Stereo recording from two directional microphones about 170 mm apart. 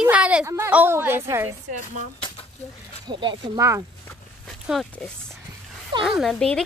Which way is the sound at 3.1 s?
25° right (ahead or behind).